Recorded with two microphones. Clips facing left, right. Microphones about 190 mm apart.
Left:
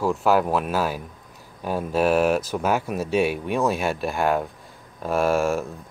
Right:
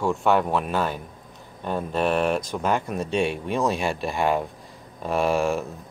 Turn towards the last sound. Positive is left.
turn(degrees=0)  # may be behind; listen again after turning